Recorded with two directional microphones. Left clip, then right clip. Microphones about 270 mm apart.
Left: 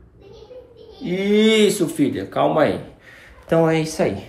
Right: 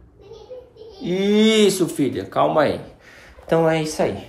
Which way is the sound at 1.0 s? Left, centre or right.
Centre.